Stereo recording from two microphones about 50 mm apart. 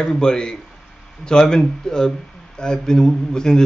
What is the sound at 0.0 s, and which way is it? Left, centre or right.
Speech, centre.